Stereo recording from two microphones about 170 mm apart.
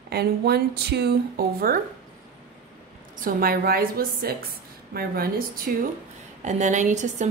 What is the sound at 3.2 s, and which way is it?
A woman's voice, 60° right (ahead or behind).